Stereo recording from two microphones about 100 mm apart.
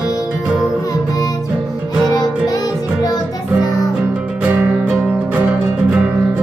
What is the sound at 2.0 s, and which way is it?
Music, 40° left (ahead or behind).